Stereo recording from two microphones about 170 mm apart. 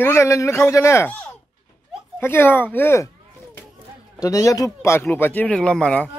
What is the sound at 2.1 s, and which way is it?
Speech, 10° left (ahead or behind).